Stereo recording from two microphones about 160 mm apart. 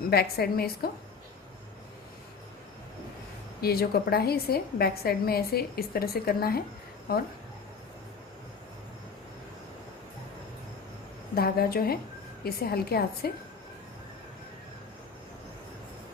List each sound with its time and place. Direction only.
0.1 s a woman's voice: 75° left (ahead or behind)
3.6 s a woman's voice: 75° left (ahead or behind)
11.3 s a woman's voice: 70° left (ahead or behind)